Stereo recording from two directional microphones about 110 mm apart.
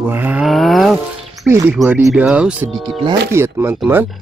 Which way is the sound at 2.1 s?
10° right (ahead or behind).